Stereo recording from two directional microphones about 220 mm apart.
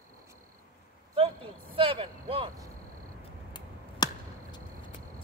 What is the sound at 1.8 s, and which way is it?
Vehicle, 25° right (ahead or behind).